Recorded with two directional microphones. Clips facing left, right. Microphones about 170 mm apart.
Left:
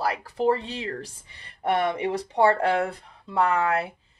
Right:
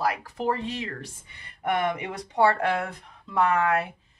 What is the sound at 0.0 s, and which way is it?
Speech, 30° left (ahead or behind).